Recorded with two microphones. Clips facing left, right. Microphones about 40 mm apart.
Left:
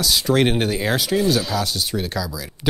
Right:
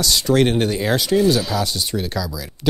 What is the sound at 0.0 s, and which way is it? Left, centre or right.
Speech, centre.